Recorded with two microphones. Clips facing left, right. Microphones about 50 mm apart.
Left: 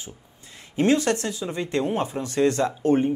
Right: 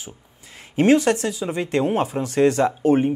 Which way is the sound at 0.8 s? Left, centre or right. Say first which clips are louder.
Right 4 dB; right.